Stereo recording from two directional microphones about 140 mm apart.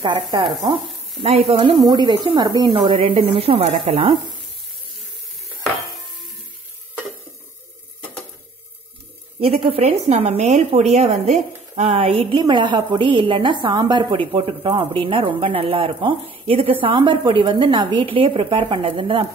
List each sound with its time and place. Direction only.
0.0 s a woman's voice: 35° right (ahead or behind)
0.7 s sizzle: centre (ahead or behind)
1.2 s speech: 45° right (ahead or behind)
1.9 s a woman's voice: 30° right (ahead or behind)
9.4 s a woman's voice: 45° right (ahead or behind)